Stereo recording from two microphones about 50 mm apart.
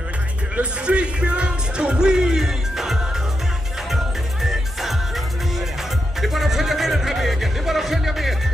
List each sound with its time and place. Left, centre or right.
0.6 s speech: right
3.9 s music: centre
6.2 s music: centre